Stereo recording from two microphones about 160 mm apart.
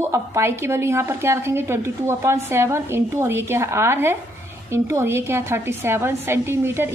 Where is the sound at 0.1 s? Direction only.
15° right (ahead or behind).